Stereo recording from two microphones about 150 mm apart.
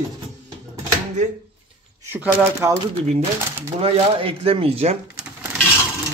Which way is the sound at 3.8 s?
40° right (ahead or behind).